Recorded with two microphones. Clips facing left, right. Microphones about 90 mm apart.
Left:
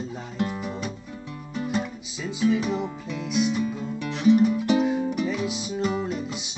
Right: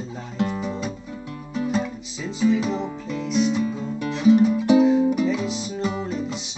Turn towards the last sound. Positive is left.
turn(degrees=5)  # may be behind; listen again after turning